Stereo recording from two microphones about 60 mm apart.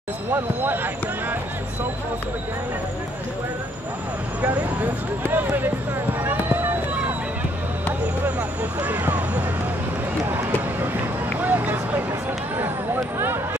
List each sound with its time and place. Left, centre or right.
5.3 s speech: right
6.2 s run: right
8.4 s vehicle: right
11.4 s vehicle: right